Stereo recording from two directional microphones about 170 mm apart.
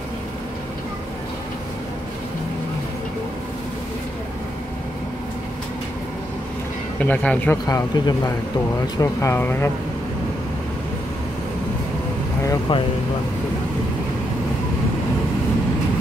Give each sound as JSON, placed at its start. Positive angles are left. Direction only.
{"t": 7.0, "sound": "speech", "side_deg": 10}
{"t": 7.6, "sound": "speech", "side_deg": 25}
{"t": 12.4, "sound": "speech", "side_deg": 30}